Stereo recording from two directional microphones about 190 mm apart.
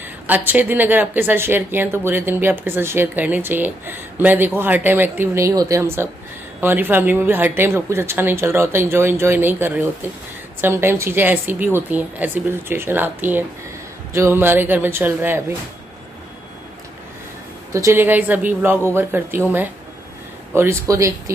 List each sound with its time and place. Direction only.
0.5 s speech: 10° right (ahead or behind)
17.7 s speech: 15° right (ahead or behind)
20.5 s speech: 15° right (ahead or behind)